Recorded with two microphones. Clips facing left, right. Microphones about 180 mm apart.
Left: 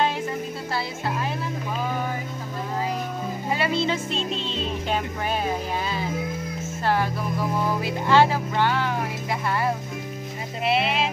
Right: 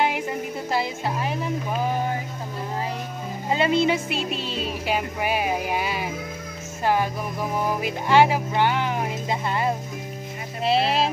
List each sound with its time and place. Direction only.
0.7 s speech: 15° right (ahead or behind)
3.5 s music: 20° right (ahead or behind)
7.5 s speech: 15° right (ahead or behind)
10.6 s a sound: 35° right (ahead or behind)